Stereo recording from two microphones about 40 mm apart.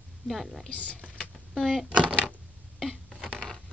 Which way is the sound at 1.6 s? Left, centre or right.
Centre.